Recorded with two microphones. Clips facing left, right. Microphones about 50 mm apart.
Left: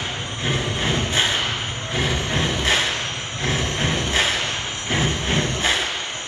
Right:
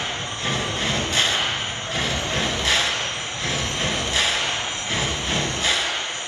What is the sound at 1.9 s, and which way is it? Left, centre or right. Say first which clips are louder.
Music: left 2 dB; left.